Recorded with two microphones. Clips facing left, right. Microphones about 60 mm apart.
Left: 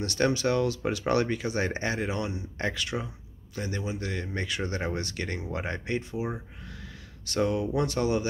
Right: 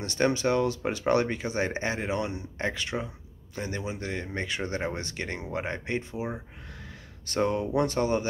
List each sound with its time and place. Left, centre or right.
0.0 s speech: right
7.2 s speech: right